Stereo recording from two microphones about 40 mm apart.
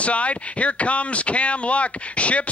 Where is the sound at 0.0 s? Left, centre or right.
Left.